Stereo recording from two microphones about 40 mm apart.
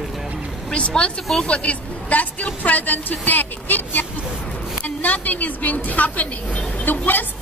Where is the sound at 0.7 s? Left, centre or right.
Left.